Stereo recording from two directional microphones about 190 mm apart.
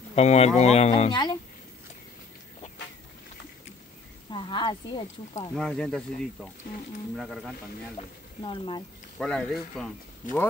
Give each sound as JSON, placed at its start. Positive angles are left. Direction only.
{"t": 0.1, "sound": "speech", "side_deg": 35}
{"t": 1.1, "sound": "speech", "side_deg": 20}
{"t": 4.3, "sound": "speech", "side_deg": 25}
{"t": 5.6, "sound": "speech", "side_deg": 5}
{"t": 8.0, "sound": "speech", "side_deg": 35}
{"t": 8.5, "sound": "speech", "side_deg": 25}
{"t": 9.2, "sound": "speech", "side_deg": 5}